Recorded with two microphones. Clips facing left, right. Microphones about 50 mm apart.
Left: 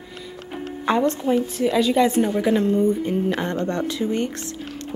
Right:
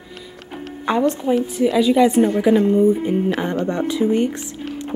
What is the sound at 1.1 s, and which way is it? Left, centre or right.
A woman's voice, centre.